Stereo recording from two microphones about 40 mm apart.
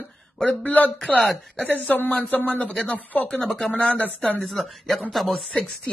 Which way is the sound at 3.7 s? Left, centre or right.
Left.